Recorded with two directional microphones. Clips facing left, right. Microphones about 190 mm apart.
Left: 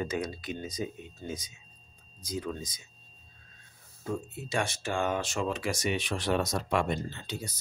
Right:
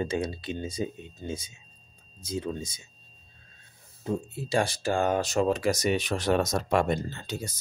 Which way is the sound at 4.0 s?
25° right (ahead or behind).